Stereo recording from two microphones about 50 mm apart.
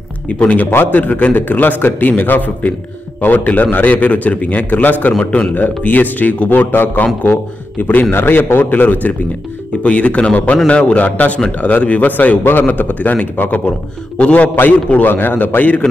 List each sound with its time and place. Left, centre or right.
0.3 s a man's voice: left
8.1 s a man's voice: left
9.8 s a man's voice: left
14.5 s a man's voice: left